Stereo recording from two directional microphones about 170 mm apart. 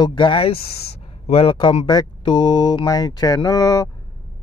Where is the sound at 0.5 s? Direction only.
65° left (ahead or behind).